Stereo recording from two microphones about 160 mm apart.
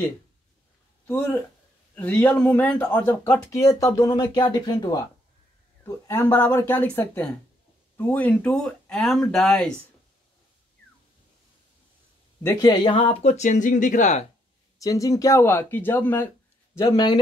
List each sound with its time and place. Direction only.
1.0 s speech: 10° left (ahead or behind)
12.4 s speech: 25° left (ahead or behind); by 14.2 s 50° left (ahead or behind)
14.8 s speech: 20° left (ahead or behind)
16.9 s speech: 25° left (ahead or behind)